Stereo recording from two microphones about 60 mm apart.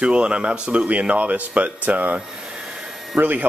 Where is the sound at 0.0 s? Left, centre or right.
Centre.